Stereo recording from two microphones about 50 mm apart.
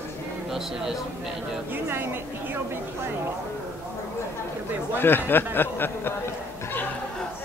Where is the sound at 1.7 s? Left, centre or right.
Right.